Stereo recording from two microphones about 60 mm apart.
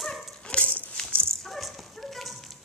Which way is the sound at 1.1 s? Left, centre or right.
Centre.